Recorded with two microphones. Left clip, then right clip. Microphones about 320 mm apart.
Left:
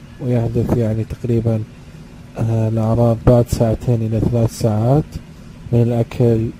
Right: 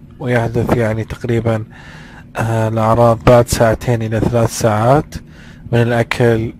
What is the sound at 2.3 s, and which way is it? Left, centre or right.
Speech, right.